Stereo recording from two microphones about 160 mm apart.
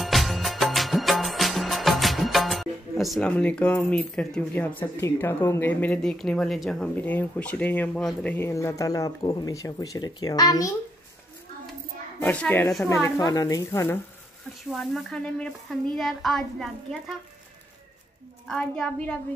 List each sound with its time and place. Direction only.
0.0 s music: centre (ahead or behind); by 10.7 s 25° left (ahead or behind)
12.2 s a woman's voice: 10° left (ahead or behind)
14.7 s speech: centre (ahead or behind)
18.5 s speech: 5° left (ahead or behind)